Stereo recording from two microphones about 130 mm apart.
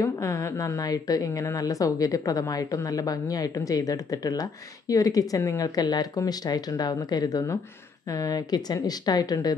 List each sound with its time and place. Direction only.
0.0 s a woman's voice: 25° left (ahead or behind)